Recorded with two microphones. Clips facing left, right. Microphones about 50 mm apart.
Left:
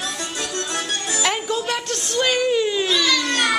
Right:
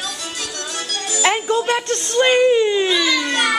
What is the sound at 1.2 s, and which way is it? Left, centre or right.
Music, centre.